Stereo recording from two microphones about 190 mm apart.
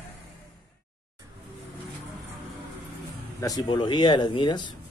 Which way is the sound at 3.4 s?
20° left (ahead or behind).